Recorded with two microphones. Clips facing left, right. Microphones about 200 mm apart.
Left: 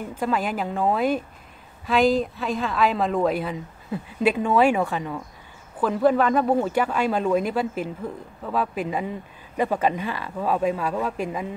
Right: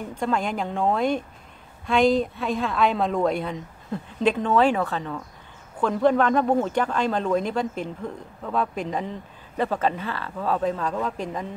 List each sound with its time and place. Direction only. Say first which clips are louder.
0.0 s speech: even; 5° left (ahead or behind)